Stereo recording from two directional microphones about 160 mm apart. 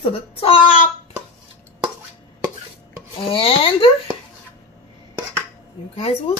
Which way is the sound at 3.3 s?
35° left (ahead or behind).